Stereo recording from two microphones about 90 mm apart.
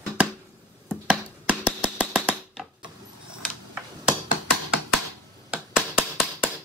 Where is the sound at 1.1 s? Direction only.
10° right (ahead or behind).